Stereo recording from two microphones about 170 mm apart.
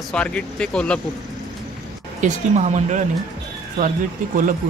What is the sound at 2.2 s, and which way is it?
Speech, 40° right (ahead or behind).